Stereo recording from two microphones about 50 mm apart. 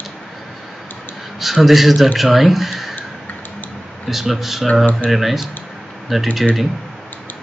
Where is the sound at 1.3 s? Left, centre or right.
Centre.